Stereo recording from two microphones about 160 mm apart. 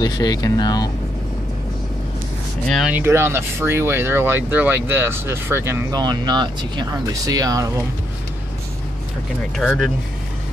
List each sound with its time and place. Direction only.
0.0 s speech: 25° left (ahead or behind)
2.9 s speech: 15° right (ahead or behind)
5.9 s speech: 25° right (ahead or behind)
9.6 s speech: centre (ahead or behind)